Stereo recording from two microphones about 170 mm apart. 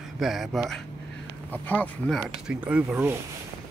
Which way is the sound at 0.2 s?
Centre (ahead or behind).